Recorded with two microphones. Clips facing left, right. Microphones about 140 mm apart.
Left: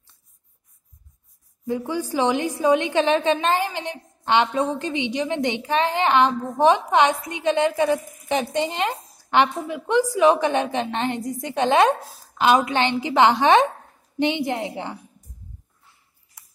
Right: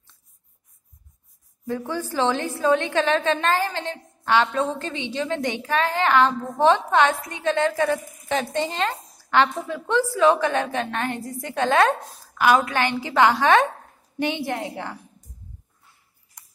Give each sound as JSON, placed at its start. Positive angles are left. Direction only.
{"t": 1.7, "sound": "a woman's voice", "side_deg": 15}